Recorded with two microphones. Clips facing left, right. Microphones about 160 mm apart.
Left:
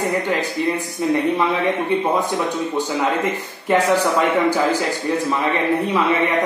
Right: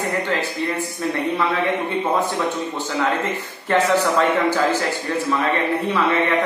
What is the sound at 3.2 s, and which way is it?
Speech, 15° left (ahead or behind).